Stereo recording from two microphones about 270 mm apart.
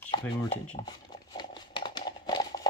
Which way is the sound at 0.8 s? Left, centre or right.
Centre.